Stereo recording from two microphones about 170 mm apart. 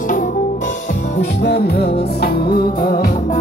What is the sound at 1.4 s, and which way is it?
Music, 70° left (ahead or behind).